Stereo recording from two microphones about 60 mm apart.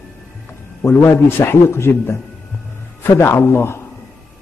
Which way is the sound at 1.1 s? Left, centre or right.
Left.